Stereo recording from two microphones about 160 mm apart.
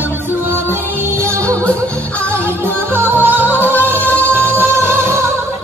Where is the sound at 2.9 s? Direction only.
15° right (ahead or behind).